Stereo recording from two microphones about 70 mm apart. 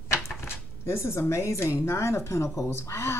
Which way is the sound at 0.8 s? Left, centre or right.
Left.